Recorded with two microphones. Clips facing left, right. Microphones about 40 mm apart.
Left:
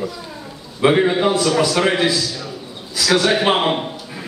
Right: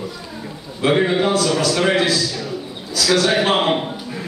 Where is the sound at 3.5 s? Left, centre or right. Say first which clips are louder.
Right 1 dB; centre.